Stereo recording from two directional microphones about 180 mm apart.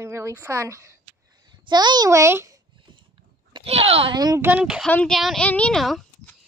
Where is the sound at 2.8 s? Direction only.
25° right (ahead or behind).